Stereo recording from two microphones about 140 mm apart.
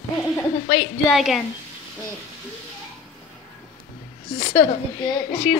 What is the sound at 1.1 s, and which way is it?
Speech, centre (ahead or behind).